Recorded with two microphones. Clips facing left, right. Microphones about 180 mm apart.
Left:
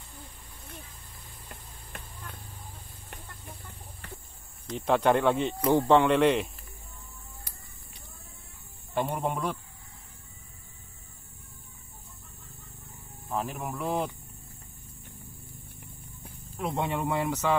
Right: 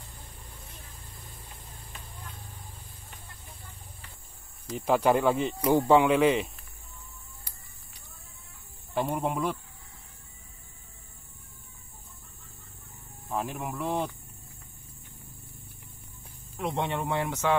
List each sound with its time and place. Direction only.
1.5 s vehicle: 60° left (ahead or behind)
4.6 s speech: 5° right (ahead or behind)
8.9 s speech: centre (ahead or behind)
13.3 s speech: centre (ahead or behind)
16.5 s speech: centre (ahead or behind)